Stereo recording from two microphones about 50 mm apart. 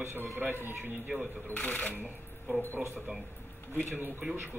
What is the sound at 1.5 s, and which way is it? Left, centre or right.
Speech, left.